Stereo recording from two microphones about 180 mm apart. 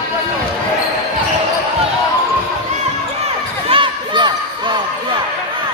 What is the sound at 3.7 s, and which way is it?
Basketball bounce, 25° right (ahead or behind).